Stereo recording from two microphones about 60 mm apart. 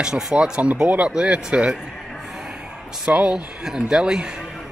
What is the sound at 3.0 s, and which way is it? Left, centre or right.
Speech, centre.